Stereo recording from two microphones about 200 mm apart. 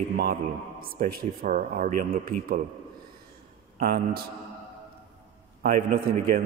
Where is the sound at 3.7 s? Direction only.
45° right (ahead or behind).